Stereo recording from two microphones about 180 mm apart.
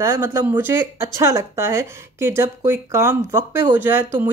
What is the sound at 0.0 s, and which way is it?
Speech, 15° right (ahead or behind).